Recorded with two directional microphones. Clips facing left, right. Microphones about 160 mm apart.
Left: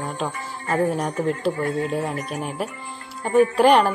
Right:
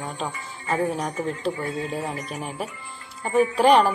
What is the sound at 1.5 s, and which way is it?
Speech, 55° left (ahead or behind).